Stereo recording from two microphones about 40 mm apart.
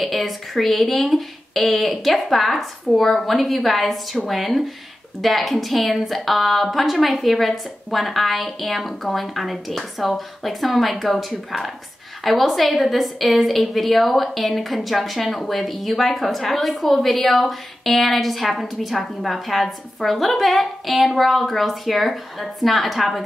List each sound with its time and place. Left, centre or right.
0.0 s a woman's voice: centre